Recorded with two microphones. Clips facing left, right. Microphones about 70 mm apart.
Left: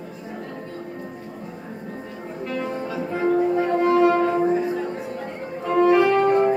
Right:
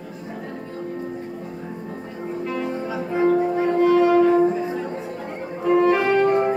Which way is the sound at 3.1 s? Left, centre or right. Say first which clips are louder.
Right 1 dB; centre.